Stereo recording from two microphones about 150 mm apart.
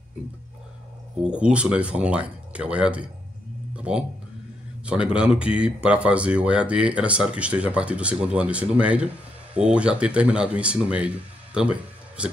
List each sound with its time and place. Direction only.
1.2 s speech: 5° right (ahead or behind)